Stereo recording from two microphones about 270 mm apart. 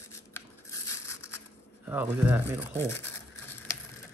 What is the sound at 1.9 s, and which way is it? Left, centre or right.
Speech, centre.